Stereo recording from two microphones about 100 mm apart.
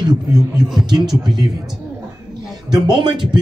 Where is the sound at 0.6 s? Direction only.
5° right (ahead or behind).